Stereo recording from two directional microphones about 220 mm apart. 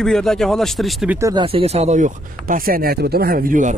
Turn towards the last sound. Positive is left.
turn(degrees=-40)  # may be behind; listen again after turning